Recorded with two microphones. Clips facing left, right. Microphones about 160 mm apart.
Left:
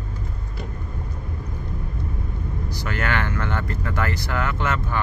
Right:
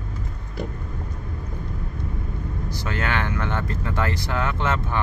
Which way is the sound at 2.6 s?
20° right (ahead or behind).